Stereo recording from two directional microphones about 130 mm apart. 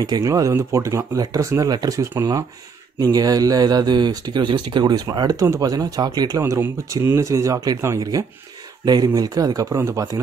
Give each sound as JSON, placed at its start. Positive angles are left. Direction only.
{"t": 0.0, "sound": "speech", "side_deg": -25}